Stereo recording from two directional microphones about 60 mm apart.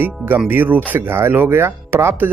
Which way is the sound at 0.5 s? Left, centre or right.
Right.